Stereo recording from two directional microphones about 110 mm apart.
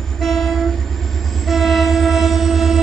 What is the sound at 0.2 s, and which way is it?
Train, 5° left (ahead or behind).